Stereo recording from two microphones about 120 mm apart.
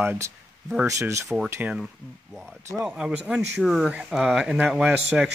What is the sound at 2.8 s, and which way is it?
Speech, 10° right (ahead or behind).